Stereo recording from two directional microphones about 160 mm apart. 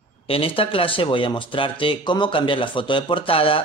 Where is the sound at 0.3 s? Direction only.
35° left (ahead or behind).